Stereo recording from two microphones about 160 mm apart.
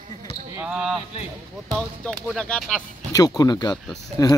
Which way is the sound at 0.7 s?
5° right (ahead or behind).